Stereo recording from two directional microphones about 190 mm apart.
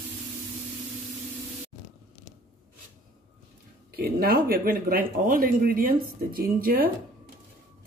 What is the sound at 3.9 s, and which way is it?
Speech, 55° right (ahead or behind).